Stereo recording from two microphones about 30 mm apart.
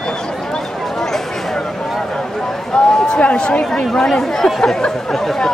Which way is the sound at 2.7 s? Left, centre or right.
Left.